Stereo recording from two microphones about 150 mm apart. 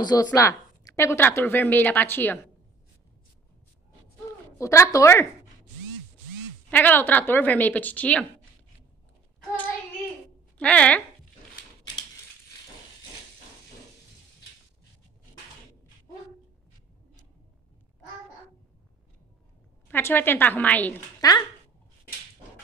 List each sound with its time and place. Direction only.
0.0 s a woman's voice: 25° left (ahead or behind)
4.6 s speech: 20° left (ahead or behind)
6.7 s a woman's voice: 10° left (ahead or behind)
10.6 s a woman's voice: 10° left (ahead or behind)
19.9 s a woman's voice: 15° left (ahead or behind)
21.2 s speech: 25° left (ahead or behind)